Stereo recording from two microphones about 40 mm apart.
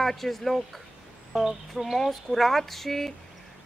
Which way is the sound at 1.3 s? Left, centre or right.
Centre.